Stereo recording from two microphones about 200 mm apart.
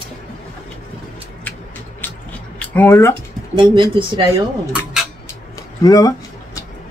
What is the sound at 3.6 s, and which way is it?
Speech, 25° right (ahead or behind).